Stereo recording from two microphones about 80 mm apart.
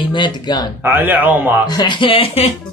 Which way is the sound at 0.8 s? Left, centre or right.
Right.